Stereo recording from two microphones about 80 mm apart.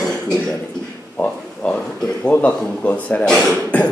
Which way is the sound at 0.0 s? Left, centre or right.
Centre.